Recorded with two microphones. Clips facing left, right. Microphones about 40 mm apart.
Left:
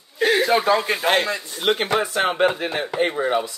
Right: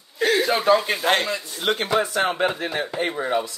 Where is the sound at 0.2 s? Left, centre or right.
Centre.